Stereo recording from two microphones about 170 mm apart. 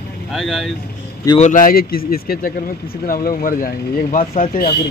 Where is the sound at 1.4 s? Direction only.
50° left (ahead or behind).